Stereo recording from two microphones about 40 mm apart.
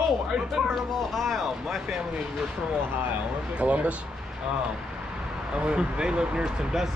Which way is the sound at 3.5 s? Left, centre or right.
Right.